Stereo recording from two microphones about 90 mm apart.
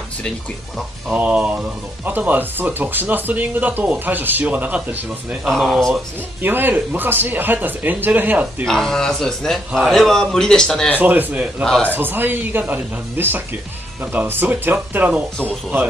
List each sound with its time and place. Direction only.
1.0 s speech: 15° right (ahead or behind)
5.4 s a man's voice: centre (ahead or behind)
6.4 s speech: 20° right (ahead or behind)
8.6 s a man's voice: 5° left (ahead or behind)
11.0 s speech: 20° right (ahead or behind)